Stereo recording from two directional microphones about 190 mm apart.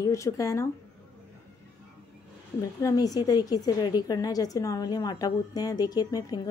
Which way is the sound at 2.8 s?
20° left (ahead or behind).